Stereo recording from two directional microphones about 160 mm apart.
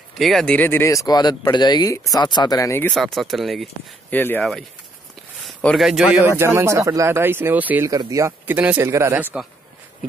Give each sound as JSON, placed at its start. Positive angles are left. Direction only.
{"t": 0.2, "sound": "speech", "side_deg": 0}
{"t": 0.6, "sound": "speech", "side_deg": 15}
{"t": 3.0, "sound": "speech", "side_deg": 0}
{"t": 4.1, "sound": "speech", "side_deg": 10}
{"t": 4.4, "sound": "speech", "side_deg": 0}
{"t": 6.2, "sound": "speech", "side_deg": -15}
{"t": 7.9, "sound": "speech", "side_deg": -20}